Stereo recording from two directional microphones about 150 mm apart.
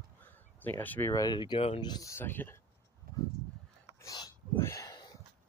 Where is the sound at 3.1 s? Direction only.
75° right (ahead or behind).